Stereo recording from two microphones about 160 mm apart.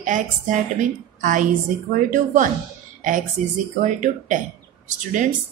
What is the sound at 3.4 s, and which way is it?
A woman's voice, 50° right (ahead or behind).